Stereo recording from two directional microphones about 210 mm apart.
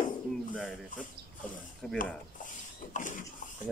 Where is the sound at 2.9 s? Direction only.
40° left (ahead or behind).